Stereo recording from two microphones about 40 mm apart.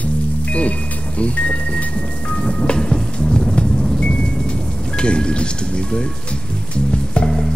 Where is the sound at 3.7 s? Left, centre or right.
Centre.